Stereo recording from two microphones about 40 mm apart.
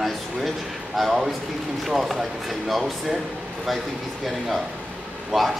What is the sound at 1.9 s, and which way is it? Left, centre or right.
Speech, centre.